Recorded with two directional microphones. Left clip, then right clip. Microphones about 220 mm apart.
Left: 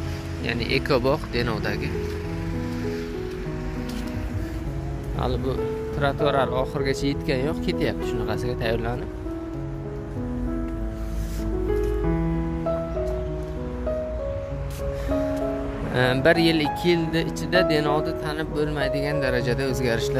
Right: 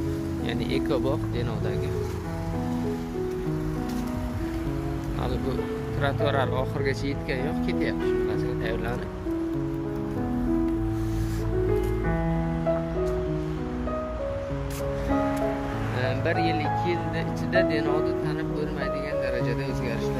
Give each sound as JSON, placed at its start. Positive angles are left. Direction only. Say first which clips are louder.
{"t": 0.5, "sound": "speech", "louder": "left 5 dB", "side_deg": 10}
{"t": 5.9, "sound": "speech", "louder": "left 4 dB", "side_deg": 15}
{"t": 16.0, "sound": "speech", "louder": "left 8 dB", "side_deg": 35}